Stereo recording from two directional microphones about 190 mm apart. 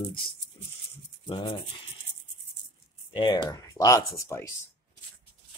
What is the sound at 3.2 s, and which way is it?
Speech, 20° left (ahead or behind).